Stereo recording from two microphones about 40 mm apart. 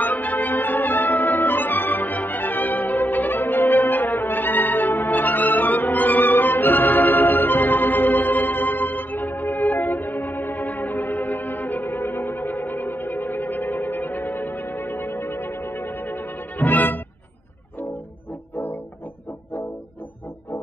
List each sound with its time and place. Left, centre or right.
0.0 s music: left